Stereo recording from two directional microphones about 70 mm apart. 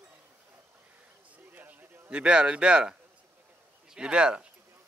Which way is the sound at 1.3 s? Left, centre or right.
Right.